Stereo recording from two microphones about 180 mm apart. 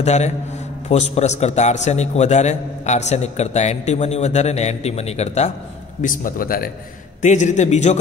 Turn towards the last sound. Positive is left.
turn(degrees=40)  # may be behind; listen again after turning